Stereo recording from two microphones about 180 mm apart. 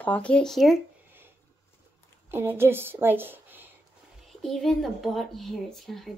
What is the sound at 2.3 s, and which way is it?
A woman's voice, 15° right (ahead or behind).